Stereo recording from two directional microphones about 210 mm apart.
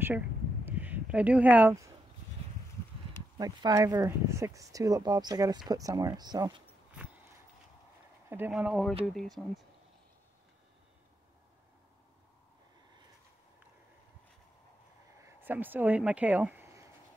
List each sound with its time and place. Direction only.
0.7 s a sound: 10° right (ahead or behind)
3.3 s speech: 15° right (ahead or behind)
8.3 s speech: 10° right (ahead or behind)
15.2 s speech: 10° right (ahead or behind)